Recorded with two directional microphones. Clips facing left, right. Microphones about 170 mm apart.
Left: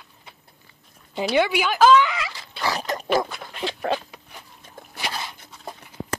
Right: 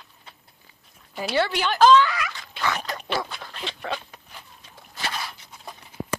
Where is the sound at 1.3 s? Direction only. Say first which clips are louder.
Left 2 dB; 10° left (ahead or behind).